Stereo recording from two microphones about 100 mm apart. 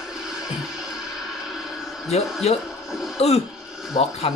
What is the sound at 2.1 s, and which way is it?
Speech, 90° left.